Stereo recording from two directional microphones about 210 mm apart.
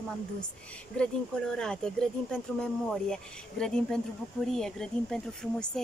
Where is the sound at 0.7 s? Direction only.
5° left (ahead or behind).